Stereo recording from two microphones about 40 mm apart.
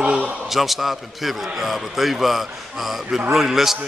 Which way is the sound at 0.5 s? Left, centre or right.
Centre.